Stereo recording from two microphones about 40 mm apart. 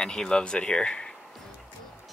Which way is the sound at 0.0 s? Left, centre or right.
Centre.